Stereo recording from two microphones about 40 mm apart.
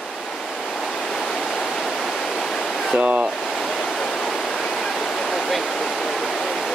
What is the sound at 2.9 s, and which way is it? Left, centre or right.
Speech, right.